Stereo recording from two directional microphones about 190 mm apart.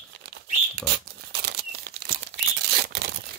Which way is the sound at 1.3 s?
60° right (ahead or behind).